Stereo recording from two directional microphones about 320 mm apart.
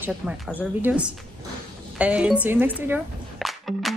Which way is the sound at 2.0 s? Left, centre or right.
Centre.